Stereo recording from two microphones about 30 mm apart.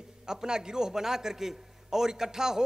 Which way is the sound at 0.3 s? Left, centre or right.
Right.